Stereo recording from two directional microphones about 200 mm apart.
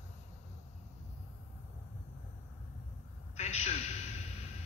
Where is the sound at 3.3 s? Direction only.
35° left (ahead or behind).